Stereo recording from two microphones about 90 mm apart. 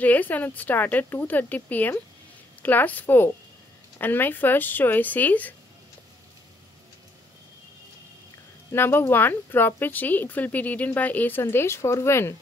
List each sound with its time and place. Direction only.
0.0 s speech: 20° left (ahead or behind)
8.7 s speech: 25° left (ahead or behind)